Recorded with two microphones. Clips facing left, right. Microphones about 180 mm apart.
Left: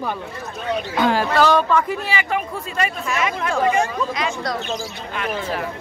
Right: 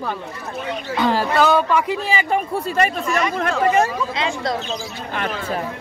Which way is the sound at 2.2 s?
35° right (ahead or behind).